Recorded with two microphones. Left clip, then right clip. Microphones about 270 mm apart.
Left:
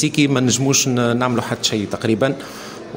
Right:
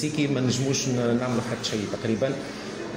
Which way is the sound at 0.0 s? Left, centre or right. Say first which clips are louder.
Left 9 dB; left.